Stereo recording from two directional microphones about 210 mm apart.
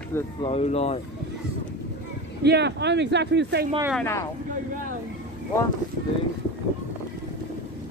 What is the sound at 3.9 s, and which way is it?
Speech, 10° left (ahead or behind).